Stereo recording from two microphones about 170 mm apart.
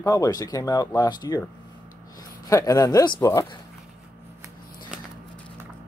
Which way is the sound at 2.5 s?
20° left (ahead or behind).